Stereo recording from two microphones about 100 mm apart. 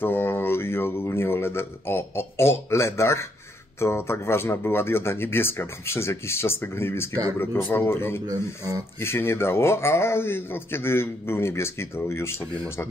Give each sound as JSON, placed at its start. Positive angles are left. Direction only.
{"t": 0.0, "sound": "a sound", "side_deg": 20}
{"t": 3.8, "sound": "a man's voice", "side_deg": 25}
{"t": 8.3, "sound": "speech", "side_deg": -35}
{"t": 9.0, "sound": "a man's voice", "side_deg": 25}